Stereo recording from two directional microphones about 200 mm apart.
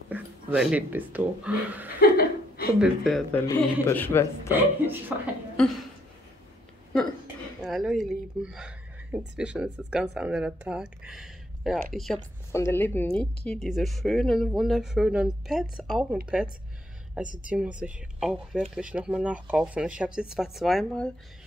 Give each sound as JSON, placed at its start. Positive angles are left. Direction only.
{"t": 0.1, "sound": "speech", "side_deg": -5}
{"t": 2.0, "sound": "laughter", "side_deg": 50}
{"t": 2.8, "sound": "a woman's voice", "side_deg": 0}
{"t": 4.6, "sound": "speech", "side_deg": -10}
{"t": 7.6, "sound": "a woman's voice", "side_deg": 0}
{"t": 12.5, "sound": "a woman's voice", "side_deg": 10}